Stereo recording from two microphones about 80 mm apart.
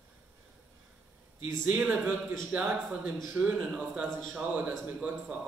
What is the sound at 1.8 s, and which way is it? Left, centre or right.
A man's voice, centre.